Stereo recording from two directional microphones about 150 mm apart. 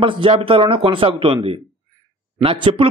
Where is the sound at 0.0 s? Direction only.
35° right (ahead or behind).